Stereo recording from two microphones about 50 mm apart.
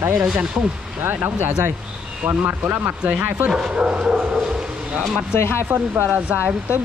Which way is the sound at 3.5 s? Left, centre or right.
Centre.